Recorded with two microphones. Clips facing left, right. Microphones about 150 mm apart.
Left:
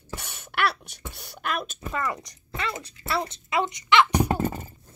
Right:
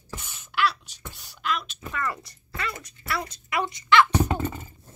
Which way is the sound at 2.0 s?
20° left (ahead or behind).